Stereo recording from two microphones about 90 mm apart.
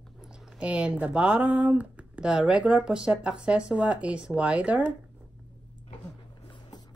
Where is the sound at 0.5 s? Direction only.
10° right (ahead or behind).